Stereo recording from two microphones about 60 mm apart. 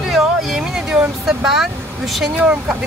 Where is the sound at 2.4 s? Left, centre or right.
Centre.